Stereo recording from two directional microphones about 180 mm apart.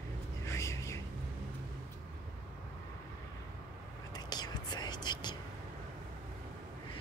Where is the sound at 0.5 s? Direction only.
15° left (ahead or behind).